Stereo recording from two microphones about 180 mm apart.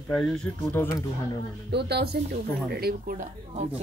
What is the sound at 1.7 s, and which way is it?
A woman's voice, 65° right (ahead or behind).